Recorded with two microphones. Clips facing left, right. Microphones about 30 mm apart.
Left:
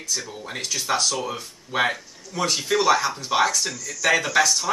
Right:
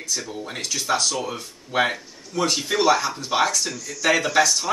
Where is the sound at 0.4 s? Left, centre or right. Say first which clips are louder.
Right 1 dB; centre.